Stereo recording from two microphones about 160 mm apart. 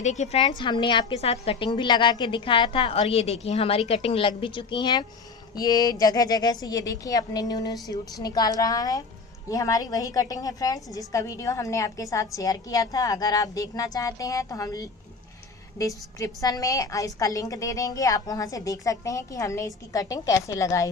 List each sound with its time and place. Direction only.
0.0 s a woman's voice: 45° left (ahead or behind)
0.5 s a woman's voice: 30° left (ahead or behind)